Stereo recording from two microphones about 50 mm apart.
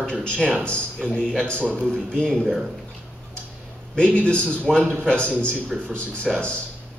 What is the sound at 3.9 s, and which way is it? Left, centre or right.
Speech, centre.